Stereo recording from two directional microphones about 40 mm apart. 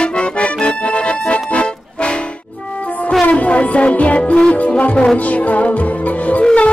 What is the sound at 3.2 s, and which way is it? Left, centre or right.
Music, left.